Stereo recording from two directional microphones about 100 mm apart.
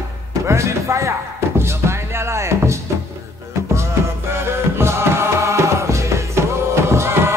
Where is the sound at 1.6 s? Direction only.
25° right (ahead or behind).